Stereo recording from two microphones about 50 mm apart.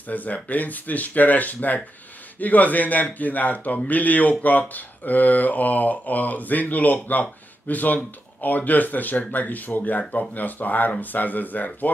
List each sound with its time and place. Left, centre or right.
0.1 s a man's voice: left